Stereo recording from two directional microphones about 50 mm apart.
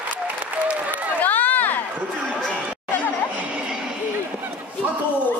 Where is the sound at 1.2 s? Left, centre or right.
Left.